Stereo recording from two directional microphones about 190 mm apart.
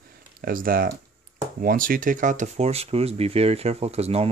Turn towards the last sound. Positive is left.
turn(degrees=-35)  # may be behind; listen again after turning